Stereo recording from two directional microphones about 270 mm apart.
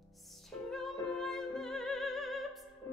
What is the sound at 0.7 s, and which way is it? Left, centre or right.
Music, centre.